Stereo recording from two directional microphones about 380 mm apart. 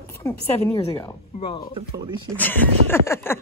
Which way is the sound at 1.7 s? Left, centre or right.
Centre.